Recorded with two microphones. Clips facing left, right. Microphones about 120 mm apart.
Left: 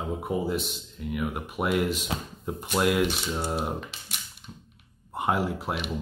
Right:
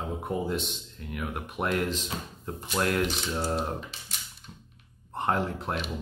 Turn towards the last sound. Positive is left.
turn(degrees=5)  # may be behind; listen again after turning